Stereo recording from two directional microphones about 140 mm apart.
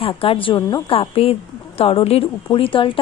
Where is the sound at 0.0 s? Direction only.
40° left (ahead or behind).